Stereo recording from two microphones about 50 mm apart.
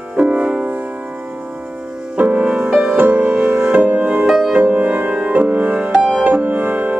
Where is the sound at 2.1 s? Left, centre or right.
Right.